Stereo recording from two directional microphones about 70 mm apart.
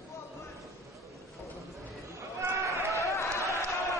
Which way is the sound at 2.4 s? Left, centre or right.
Right.